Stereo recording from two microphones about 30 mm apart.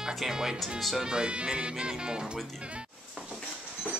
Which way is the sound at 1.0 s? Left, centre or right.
Right.